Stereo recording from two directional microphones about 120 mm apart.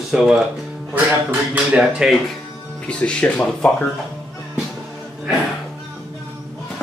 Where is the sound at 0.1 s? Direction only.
5° right (ahead or behind).